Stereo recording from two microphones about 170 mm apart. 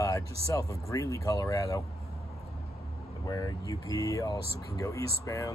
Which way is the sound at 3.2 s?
20° left (ahead or behind).